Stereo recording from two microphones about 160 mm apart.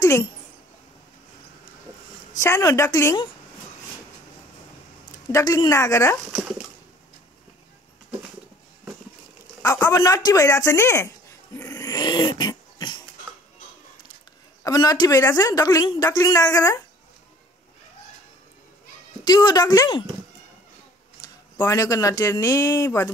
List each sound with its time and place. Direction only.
0.0 s speech: 25° left (ahead or behind)
2.3 s speech: 20° left (ahead or behind)
5.3 s speech: 20° left (ahead or behind)
9.6 s speech: 15° left (ahead or behind)
11.5 s dog: 15° left (ahead or behind)
14.6 s speech: 25° left (ahead or behind)
19.2 s speech: 25° left (ahead or behind)
21.2 s speech: 20° left (ahead or behind)